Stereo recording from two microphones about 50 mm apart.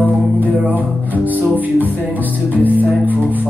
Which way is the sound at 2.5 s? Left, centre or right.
Left.